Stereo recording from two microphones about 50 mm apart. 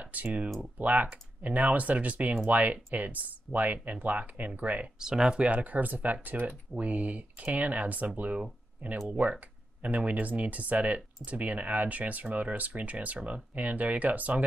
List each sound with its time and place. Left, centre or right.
0.0 s speech: right
5.0 s speech: centre
5.4 s speech: right